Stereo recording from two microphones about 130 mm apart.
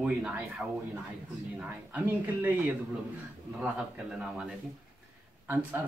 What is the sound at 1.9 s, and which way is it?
Speech, 10° right (ahead or behind).